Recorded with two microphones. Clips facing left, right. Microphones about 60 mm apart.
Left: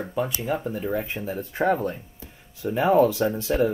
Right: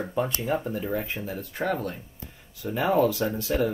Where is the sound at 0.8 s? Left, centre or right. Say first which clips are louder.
Left 2 dB; centre.